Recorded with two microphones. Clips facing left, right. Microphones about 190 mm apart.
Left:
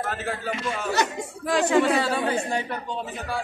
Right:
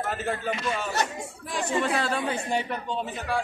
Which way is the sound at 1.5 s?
90° left.